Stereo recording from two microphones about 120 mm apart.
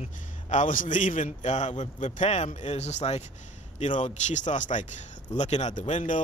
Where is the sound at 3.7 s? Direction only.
80° left.